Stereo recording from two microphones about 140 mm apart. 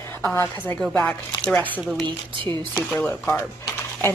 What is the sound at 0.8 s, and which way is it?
Speech, 5° left (ahead or behind).